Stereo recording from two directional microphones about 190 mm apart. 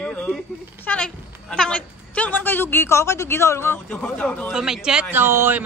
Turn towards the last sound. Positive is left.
turn(degrees=-10)  # may be behind; listen again after turning